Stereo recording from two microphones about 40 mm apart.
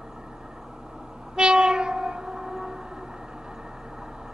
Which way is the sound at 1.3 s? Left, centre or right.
Right.